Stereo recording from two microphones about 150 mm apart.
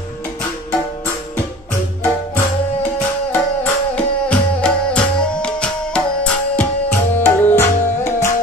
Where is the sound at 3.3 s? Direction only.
10° left (ahead or behind).